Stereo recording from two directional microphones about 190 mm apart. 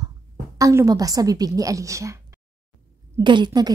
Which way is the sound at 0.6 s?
15° right (ahead or behind).